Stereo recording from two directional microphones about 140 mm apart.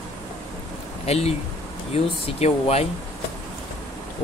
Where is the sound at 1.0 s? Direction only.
45° left (ahead or behind).